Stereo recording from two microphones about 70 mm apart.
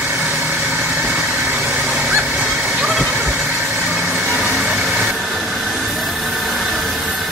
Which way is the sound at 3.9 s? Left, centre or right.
Centre.